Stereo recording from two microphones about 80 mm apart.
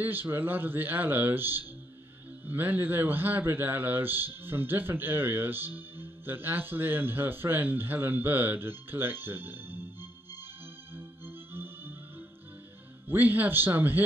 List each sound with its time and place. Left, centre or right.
0.0 s speech: right
11.0 s music: right
13.1 s speech: right